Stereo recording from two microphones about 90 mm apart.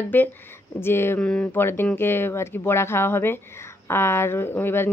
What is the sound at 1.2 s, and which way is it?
Speech, 15° left (ahead or behind).